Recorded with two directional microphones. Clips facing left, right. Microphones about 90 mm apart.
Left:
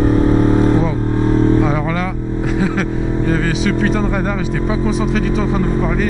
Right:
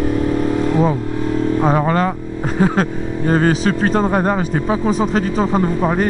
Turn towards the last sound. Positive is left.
turn(degrees=-40)  # may be behind; listen again after turning